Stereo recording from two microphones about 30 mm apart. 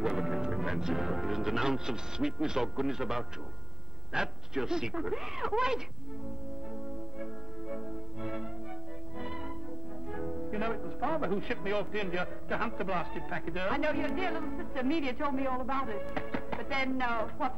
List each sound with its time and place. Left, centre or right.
0.0 s music: centre
1.0 s speech: centre
1.4 s a man's voice: centre
7.7 s music: centre
10.1 s music: centre
10.5 s music: centre
11.0 s a man's voice: centre
14.7 s a man's voice: centre